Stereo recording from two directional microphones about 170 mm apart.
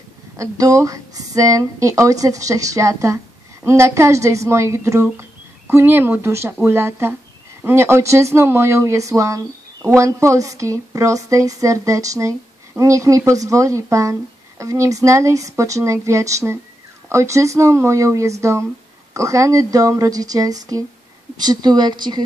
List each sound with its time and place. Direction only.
0.4 s speech: 20° right (ahead or behind)